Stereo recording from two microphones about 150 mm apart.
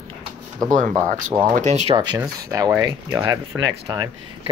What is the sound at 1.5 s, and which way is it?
Speech, 50° right (ahead or behind).